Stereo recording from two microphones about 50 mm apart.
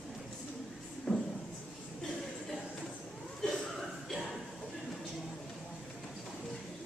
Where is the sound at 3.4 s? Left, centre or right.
Centre.